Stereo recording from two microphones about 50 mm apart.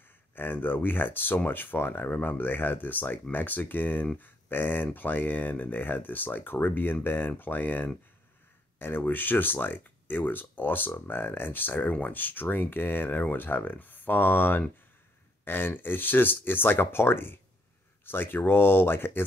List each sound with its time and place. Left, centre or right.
0.4 s speech: left
8.7 s a sound: left
9.0 s speech: left